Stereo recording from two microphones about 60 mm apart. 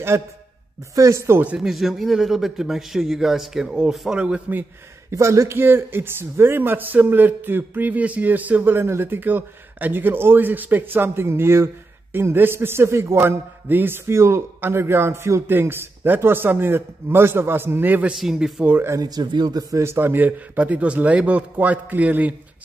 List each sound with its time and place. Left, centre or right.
0.1 s speech: right
1.6 s a man's voice: centre
5.1 s a man's voice: right
5.6 s speech: right
8.7 s speech: right
15.4 s speech: right
18.2 s a man's voice: centre
18.9 s speech: right
19.8 s speech: right
20.5 s a man's voice: right